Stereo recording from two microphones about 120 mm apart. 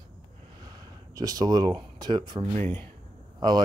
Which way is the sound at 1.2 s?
30° right (ahead or behind).